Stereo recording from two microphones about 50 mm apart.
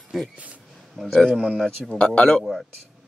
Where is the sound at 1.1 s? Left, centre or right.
Centre.